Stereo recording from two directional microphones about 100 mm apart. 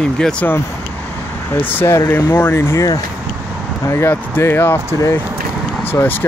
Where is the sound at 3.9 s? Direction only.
25° left (ahead or behind).